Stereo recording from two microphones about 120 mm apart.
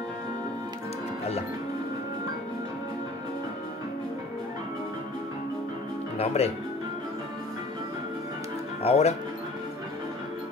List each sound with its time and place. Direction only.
6.1 s speech: 60° left (ahead or behind)
8.8 s speech: 60° left (ahead or behind)